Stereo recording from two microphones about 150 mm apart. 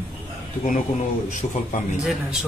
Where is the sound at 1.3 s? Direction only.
55° left (ahead or behind).